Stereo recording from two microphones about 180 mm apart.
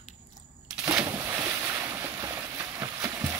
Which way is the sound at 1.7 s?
15° right (ahead or behind).